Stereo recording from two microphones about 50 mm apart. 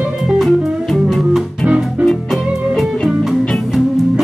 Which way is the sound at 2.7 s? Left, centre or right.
Centre.